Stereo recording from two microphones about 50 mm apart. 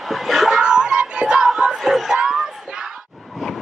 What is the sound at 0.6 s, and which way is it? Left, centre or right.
Crowd, centre.